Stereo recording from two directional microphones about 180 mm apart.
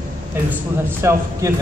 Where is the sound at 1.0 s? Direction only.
15° right (ahead or behind).